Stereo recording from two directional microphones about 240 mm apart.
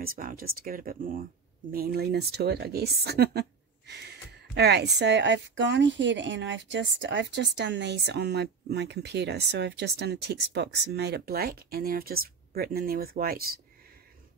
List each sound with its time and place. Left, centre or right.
0.0 s a woman's voice: right